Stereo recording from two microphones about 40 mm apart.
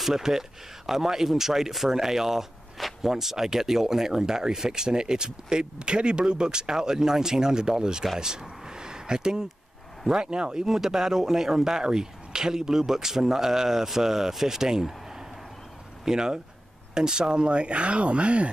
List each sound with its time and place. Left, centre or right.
0.0 s speech: centre
8.2 s a sound: centre
10.0 s speech: centre